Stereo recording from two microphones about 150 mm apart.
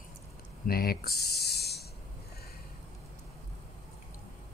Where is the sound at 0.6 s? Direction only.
90° left.